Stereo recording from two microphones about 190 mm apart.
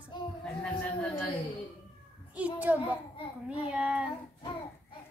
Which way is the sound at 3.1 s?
30° left (ahead or behind).